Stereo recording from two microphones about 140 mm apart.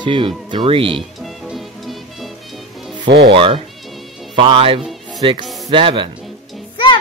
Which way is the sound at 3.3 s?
40° right (ahead or behind).